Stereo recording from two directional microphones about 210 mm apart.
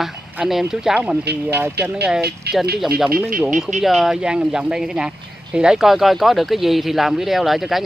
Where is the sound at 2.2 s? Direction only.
50° right (ahead or behind).